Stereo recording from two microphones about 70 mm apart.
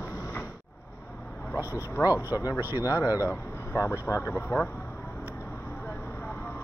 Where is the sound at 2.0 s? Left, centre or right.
Left.